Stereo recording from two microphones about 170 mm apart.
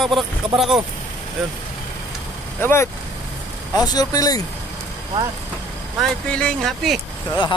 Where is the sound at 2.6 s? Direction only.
15° left (ahead or behind).